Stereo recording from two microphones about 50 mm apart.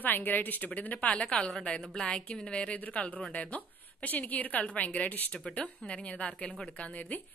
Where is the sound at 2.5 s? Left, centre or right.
Left.